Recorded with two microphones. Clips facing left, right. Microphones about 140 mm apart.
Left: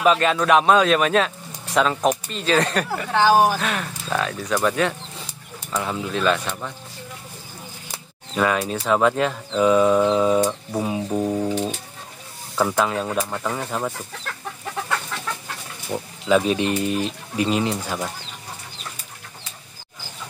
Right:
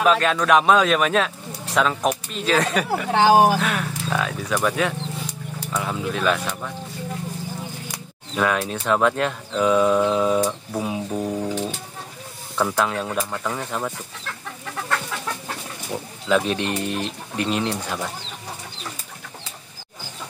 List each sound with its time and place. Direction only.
0.0 s speech: centre (ahead or behind)
3.1 s speech: 15° right (ahead or behind)
3.5 s speech: centre (ahead or behind)
8.4 s speech: centre (ahead or behind)
12.5 s speech: centre (ahead or behind)
15.9 s speech: centre (ahead or behind)